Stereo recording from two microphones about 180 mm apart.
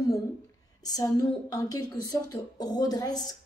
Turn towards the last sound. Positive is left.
turn(degrees=20)  # may be behind; listen again after turning